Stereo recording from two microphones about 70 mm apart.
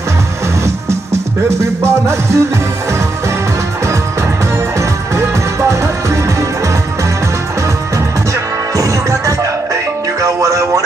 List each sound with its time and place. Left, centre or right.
1.6 s music: right
4.7 s music: right
8.7 s music: right